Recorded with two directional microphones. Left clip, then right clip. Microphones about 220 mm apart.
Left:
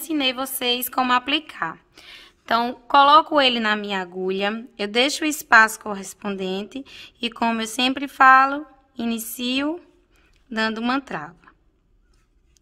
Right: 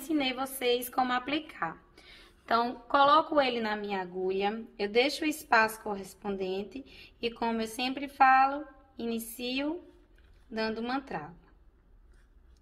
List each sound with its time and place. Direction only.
0.1 s a woman's voice: 35° left (ahead or behind)